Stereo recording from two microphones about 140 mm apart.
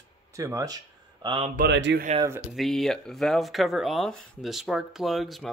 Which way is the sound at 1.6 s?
90° right.